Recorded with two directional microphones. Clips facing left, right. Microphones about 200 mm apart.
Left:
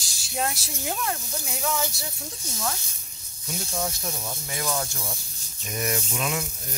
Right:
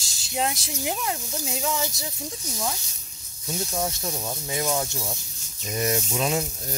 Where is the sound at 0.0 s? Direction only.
20° right (ahead or behind).